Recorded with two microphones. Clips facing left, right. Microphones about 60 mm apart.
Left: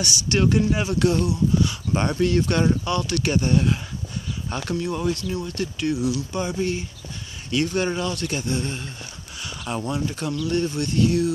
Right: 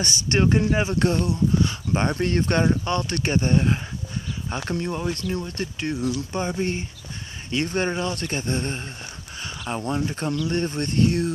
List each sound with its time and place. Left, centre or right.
0.0 s speech: right
2.6 s speech: right
2.9 s speech: right
5.1 s speech: right